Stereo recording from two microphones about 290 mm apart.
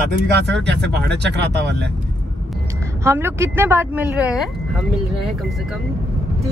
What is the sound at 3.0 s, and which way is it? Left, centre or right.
Speech, centre.